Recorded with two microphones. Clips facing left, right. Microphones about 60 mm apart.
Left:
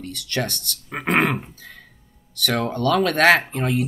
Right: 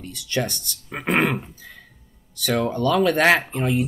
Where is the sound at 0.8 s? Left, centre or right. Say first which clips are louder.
Left 1 dB; centre.